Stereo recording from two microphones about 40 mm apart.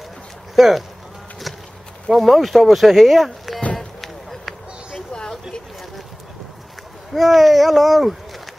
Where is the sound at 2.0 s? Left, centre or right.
Centre.